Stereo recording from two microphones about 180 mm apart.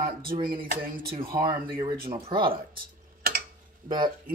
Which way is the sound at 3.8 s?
25° right (ahead or behind).